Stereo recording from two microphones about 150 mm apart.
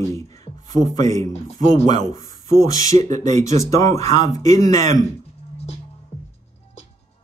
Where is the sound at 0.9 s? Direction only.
20° left (ahead or behind).